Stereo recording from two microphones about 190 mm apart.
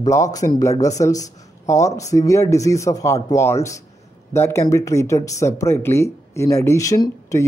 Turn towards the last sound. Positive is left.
turn(degrees=15)  # may be behind; listen again after turning